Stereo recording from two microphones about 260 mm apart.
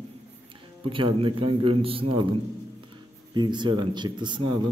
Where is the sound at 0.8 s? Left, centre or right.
Centre.